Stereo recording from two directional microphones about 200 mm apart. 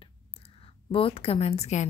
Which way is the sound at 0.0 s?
30° left (ahead or behind).